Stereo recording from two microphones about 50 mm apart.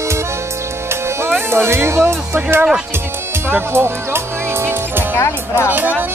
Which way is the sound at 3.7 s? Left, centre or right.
Right.